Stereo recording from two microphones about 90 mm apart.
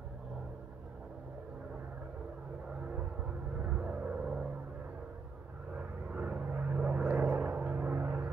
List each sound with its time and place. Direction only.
2.9 s music: 10° right (ahead or behind)
5.8 s vehicle: 15° right (ahead or behind)